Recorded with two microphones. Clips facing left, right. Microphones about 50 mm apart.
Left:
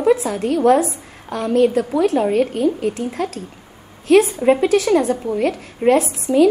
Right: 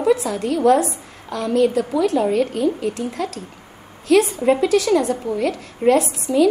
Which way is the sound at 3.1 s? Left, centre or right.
Left.